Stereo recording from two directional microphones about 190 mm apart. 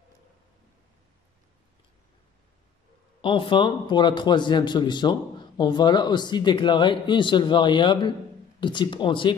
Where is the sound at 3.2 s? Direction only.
25° left (ahead or behind).